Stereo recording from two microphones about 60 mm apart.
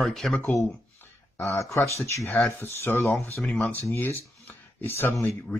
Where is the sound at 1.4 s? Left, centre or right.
Left.